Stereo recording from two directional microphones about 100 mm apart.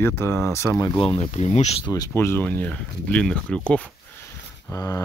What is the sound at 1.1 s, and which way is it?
Speech, 90° left.